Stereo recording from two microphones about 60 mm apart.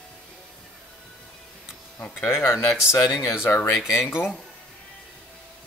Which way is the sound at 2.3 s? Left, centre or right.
Left.